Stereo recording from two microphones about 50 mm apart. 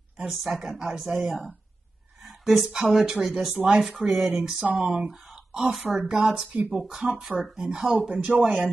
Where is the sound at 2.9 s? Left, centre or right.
Centre.